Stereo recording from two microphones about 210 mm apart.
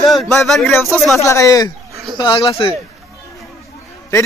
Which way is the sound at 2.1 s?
20° left (ahead or behind).